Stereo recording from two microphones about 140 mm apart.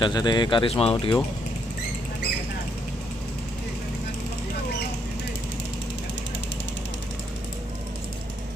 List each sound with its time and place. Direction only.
0.0 s speech: 30° left (ahead or behind)
0.9 s speech: 30° left (ahead or behind)